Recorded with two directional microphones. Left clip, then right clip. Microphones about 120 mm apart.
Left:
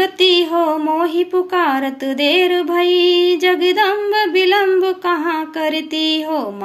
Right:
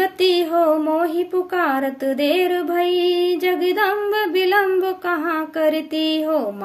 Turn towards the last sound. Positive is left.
turn(degrees=-40)  # may be behind; listen again after turning